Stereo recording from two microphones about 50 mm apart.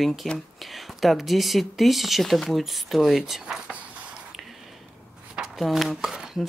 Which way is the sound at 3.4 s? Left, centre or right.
Centre.